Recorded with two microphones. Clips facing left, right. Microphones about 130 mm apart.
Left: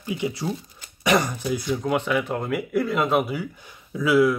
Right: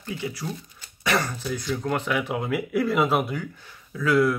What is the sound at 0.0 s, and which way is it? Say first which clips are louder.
Speech: left 5 dB; 15° left (ahead or behind).